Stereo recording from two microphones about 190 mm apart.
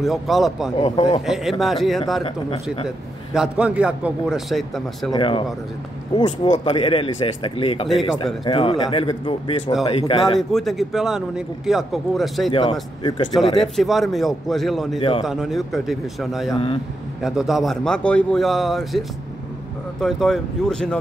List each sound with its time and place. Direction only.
0.0 s speech: centre (ahead or behind)
0.7 s speech: 35° left (ahead or behind)
1.2 s speech: centre (ahead or behind)
2.2 s speech: 30° left (ahead or behind)
3.3 s speech: 5° right (ahead or behind)
5.1 s speech: 25° left (ahead or behind)
6.6 s speech: 25° left (ahead or behind)
7.9 s speech: centre (ahead or behind)
8.5 s speech: 25° left (ahead or behind)
10.5 s speech: centre (ahead or behind)
12.4 s speech: 25° left (ahead or behind)
13.6 s speech: centre (ahead or behind)
15.0 s speech: 25° left (ahead or behind)
15.2 s speech: centre (ahead or behind)